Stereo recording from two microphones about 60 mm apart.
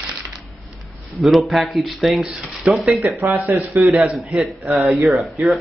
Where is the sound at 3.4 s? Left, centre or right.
Right.